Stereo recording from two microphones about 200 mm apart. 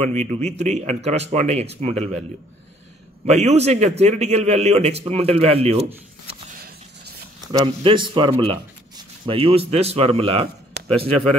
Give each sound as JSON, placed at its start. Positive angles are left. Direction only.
{"t": 0.0, "sound": "a man's voice", "side_deg": -35}
{"t": 3.3, "sound": "a man's voice", "side_deg": -35}
{"t": 6.5, "sound": "a sound", "side_deg": -50}
{"t": 7.5, "sound": "speech", "side_deg": -25}